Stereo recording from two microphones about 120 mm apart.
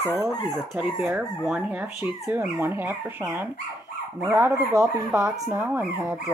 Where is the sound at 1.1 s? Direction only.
10° right (ahead or behind).